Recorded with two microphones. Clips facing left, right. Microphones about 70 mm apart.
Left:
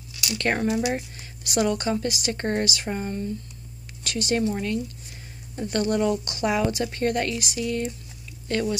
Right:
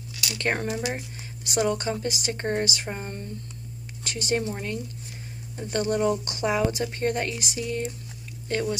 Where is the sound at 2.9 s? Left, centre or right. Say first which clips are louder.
Left 5 dB; centre.